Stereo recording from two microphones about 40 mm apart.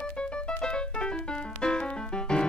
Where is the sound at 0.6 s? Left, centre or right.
Left.